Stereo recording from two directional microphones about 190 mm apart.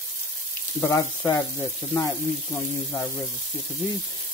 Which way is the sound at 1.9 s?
10° left (ahead or behind).